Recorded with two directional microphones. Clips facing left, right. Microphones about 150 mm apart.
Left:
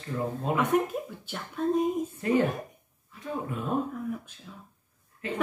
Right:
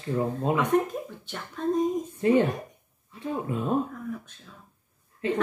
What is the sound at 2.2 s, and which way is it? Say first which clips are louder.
Speech: right 4 dB; 25° right (ahead or behind).